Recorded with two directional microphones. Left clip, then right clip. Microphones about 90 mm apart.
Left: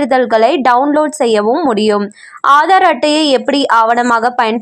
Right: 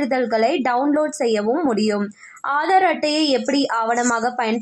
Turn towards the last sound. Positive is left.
turn(degrees=20)  # may be behind; listen again after turning